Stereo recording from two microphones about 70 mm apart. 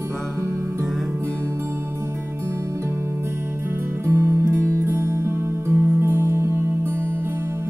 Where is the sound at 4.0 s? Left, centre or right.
Right.